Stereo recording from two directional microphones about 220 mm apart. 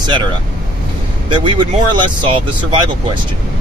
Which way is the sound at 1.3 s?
20° right (ahead or behind).